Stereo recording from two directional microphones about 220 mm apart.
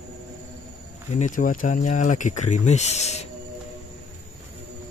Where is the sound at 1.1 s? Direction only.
35° left (ahead or behind).